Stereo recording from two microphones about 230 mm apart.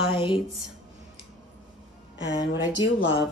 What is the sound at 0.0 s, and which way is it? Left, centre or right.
Speech, left.